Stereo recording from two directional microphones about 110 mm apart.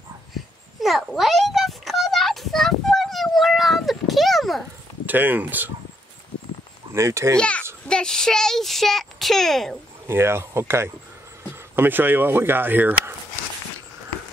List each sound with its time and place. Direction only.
0.7 s a sound: centre (ahead or behind)
5.0 s speech: 15° right (ahead or behind)
6.9 s speech: 25° right (ahead or behind)
7.3 s a child's voice: 10° left (ahead or behind)
10.0 s speech: 25° right (ahead or behind)